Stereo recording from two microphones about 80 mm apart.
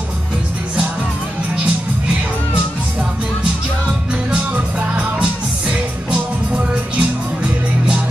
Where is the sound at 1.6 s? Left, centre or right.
Centre.